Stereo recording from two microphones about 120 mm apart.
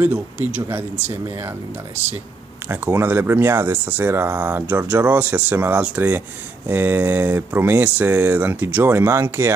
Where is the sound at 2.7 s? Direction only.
15° right (ahead or behind).